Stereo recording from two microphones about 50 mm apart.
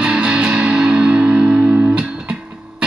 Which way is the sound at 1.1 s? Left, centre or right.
Right.